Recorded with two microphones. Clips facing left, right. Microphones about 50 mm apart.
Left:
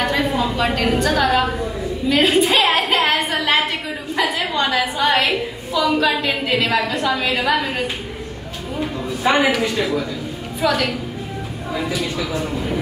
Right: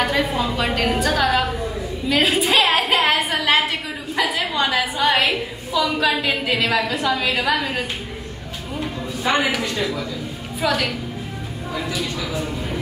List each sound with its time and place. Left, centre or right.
0.0 s a woman's voice: centre
9.2 s a woman's voice: centre